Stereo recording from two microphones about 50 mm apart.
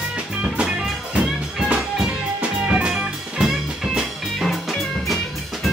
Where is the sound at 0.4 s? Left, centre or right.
Centre.